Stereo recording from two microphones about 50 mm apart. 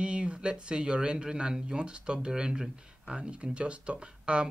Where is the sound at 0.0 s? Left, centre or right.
Right.